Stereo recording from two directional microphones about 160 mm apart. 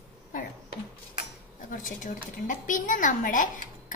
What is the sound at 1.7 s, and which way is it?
A woman's voice, 55° left (ahead or behind).